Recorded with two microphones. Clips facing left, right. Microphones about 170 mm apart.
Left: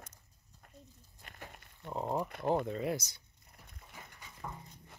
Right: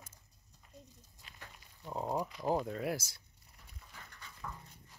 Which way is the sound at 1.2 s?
55° left (ahead or behind).